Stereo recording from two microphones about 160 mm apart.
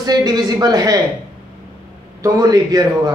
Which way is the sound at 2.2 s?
25° right (ahead or behind).